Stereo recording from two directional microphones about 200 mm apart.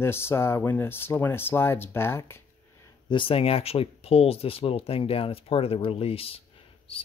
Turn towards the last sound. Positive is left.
turn(degrees=25)  # may be behind; listen again after turning